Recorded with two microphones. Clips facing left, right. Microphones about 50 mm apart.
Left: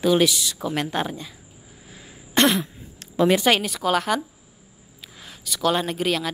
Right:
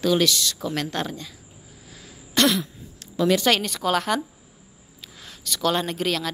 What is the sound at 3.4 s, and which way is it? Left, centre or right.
A woman's voice, centre.